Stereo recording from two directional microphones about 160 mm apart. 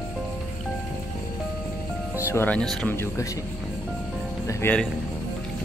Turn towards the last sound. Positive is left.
turn(degrees=10)  # may be behind; listen again after turning